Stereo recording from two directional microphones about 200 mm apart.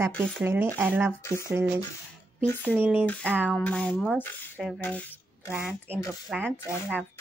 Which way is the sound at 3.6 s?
5° left (ahead or behind).